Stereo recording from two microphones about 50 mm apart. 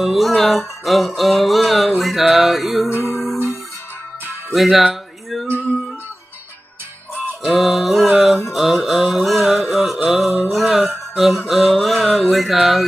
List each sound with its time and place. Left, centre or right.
0.0 s music: centre
2.9 s music: left
4.6 s music: centre
7.4 s music: centre
8.5 s mantra: centre
9.5 s carnatic music: centre
10.0 s music: centre
10.7 s a sound: centre